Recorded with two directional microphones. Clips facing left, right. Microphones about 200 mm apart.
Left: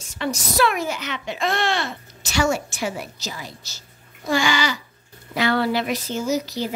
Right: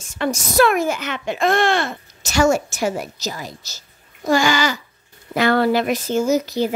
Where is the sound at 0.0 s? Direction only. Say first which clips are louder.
Right 4 dB; 50° right (ahead or behind).